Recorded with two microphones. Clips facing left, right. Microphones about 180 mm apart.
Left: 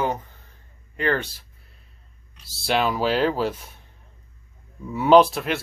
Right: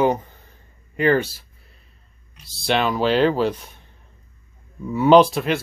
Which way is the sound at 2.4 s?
5° left (ahead or behind).